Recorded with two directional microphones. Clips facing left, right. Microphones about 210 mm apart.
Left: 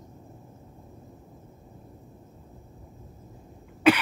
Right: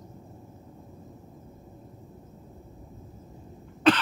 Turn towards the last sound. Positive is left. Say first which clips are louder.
# left 1 dB
turn(degrees=10)  # may be behind; listen again after turning